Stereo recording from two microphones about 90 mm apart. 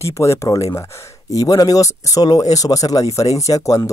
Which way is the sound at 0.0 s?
35° left (ahead or behind).